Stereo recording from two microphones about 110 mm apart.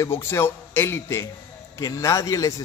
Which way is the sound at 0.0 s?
25° left (ahead or behind).